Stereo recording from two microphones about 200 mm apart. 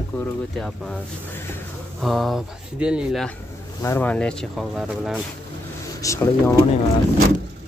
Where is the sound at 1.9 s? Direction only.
Centre (ahead or behind).